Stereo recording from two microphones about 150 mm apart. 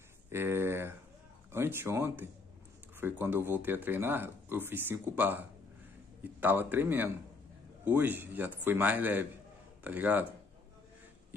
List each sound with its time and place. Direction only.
0.3 s speech: 15° right (ahead or behind)
6.4 s speech: 10° right (ahead or behind)